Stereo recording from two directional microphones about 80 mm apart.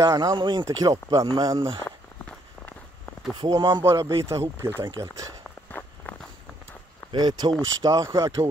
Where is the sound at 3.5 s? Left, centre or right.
Right.